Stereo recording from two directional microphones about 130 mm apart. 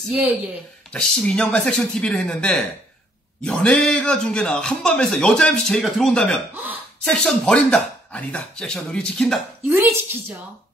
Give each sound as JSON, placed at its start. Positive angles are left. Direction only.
{"t": 0.9, "sound": "a man's voice", "side_deg": 5}
{"t": 9.7, "sound": "speech", "side_deg": -20}